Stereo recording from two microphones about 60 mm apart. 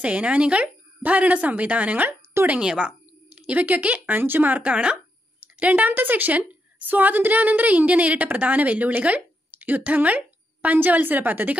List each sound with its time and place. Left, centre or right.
0.0 s a woman's voice: right
2.6 s a woman's voice: centre
3.3 s a woman's voice: right